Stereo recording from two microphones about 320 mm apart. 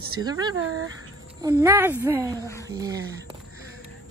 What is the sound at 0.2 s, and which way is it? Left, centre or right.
Speech, centre.